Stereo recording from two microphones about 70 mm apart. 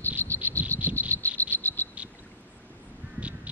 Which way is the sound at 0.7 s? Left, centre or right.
Left.